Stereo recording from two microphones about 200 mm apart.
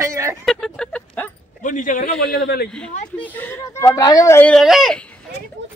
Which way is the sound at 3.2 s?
10° left (ahead or behind).